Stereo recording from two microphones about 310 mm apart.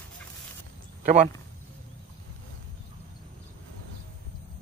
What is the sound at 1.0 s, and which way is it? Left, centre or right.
Speech, right.